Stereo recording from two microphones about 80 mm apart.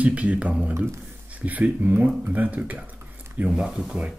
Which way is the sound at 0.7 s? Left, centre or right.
Right.